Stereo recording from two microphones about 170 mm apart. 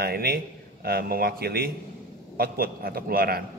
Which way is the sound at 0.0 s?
65° right (ahead or behind).